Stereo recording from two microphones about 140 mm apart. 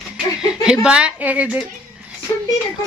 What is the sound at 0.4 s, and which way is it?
Speech, 5° right (ahead or behind).